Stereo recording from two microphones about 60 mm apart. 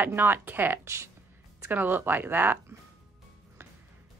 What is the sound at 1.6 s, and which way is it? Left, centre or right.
A woman's voice, right.